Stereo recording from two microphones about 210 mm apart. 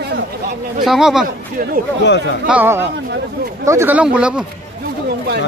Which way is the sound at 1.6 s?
40° right (ahead or behind).